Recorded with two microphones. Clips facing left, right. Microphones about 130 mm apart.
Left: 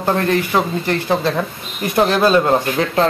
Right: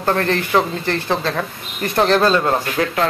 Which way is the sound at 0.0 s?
15° left (ahead or behind).